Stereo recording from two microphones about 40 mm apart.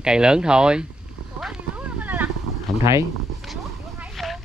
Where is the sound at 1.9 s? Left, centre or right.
Right.